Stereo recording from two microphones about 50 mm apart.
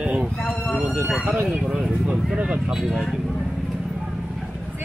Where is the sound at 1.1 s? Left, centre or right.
Centre.